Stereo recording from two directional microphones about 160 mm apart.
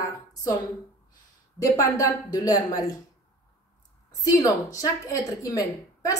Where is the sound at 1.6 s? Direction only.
20° left (ahead or behind).